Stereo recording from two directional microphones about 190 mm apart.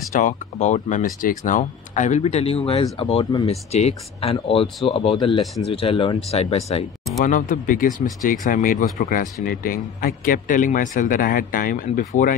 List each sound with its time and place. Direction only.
0.1 s speech: 40° left (ahead or behind)
7.2 s speech: 45° left (ahead or behind)